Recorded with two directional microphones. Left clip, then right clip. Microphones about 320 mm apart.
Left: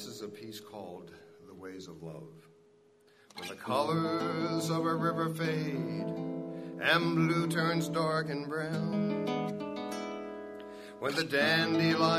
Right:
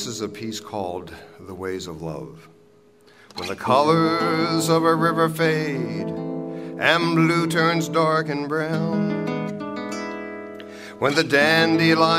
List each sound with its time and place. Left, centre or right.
0.0 s speech: right
3.4 s speech: right
6.1 s music: centre
6.6 s music: right
9.2 s guitar: right
11.0 s speech: right